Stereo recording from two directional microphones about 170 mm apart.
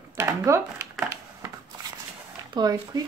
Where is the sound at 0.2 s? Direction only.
15° right (ahead or behind).